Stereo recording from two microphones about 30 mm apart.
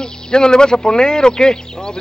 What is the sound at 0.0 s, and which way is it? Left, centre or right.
Speech, left.